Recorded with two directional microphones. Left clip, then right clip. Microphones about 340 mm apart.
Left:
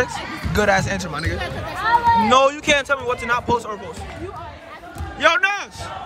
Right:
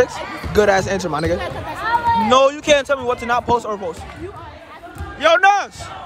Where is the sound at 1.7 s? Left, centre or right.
Centre.